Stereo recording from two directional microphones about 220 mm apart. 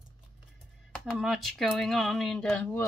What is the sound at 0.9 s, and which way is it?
Speech, centre (ahead or behind).